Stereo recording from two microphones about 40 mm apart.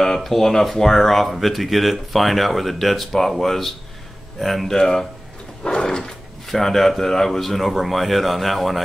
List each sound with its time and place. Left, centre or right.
0.2 s speech: centre
5.6 s drawer open or close: left
5.9 s dog: centre
6.4 s speech: centre